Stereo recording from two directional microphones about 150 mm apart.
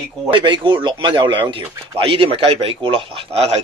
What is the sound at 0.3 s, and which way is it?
A man's voice, 35° right (ahead or behind).